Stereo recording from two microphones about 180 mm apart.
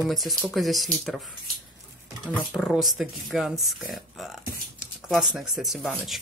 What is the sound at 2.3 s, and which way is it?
Speech, centre (ahead or behind).